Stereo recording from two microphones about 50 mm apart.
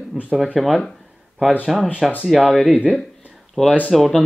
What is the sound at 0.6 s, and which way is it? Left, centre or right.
Speech, centre.